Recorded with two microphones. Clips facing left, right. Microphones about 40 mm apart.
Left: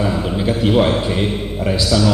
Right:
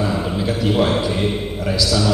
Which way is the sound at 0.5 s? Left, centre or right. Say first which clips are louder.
Left 3 dB; left.